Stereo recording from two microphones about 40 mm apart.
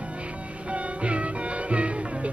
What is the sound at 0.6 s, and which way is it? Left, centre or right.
Music, right.